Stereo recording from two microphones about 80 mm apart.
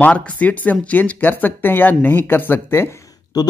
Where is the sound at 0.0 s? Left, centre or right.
Centre.